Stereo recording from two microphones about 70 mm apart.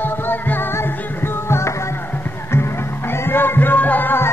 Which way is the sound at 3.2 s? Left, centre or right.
Left.